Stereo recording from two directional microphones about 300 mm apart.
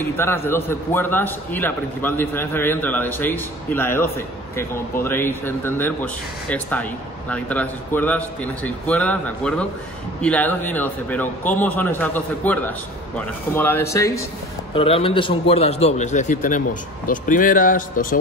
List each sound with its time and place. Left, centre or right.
0.5 s a man's voice: centre; by 18.2 s left